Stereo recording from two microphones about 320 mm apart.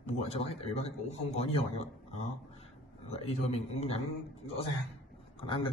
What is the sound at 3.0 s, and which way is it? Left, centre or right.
Speech, centre.